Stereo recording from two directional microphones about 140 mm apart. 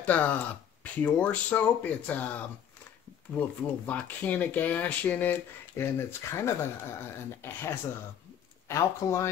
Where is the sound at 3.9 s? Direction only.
10° left (ahead or behind).